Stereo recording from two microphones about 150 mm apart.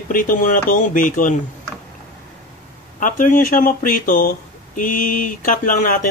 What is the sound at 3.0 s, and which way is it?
Speech, 60° left (ahead or behind).